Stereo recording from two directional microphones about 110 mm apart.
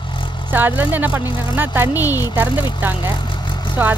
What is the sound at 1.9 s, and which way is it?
Speech, 30° left (ahead or behind).